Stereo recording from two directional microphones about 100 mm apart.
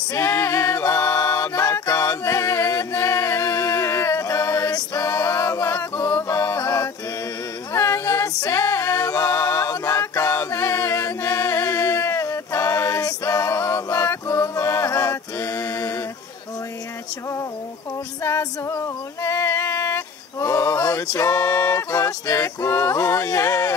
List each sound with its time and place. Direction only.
0.1 s a capella: 25° left (ahead or behind)
7.7 s music: 25° left (ahead or behind)
18.2 s female singing: 30° left (ahead or behind)
21.4 s music: 20° left (ahead or behind)
21.9 s a sound: 35° left (ahead or behind)